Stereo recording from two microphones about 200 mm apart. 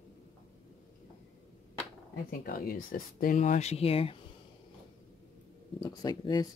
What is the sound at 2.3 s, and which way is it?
Speech, 45° left (ahead or behind).